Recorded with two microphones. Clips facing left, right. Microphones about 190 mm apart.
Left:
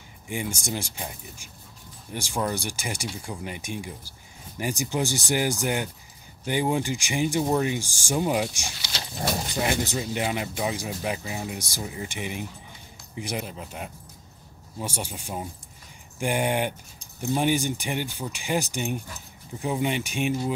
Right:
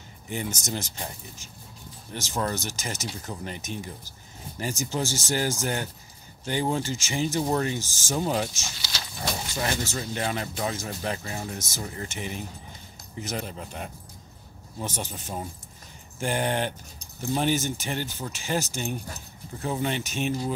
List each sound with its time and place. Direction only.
0.3 s speech: 10° left (ahead or behind)
8.6 s keys jangling: 25° left (ahead or behind)
9.5 s speech: 15° left (ahead or behind)